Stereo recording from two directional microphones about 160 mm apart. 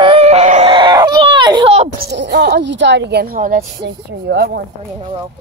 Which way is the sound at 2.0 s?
85° right.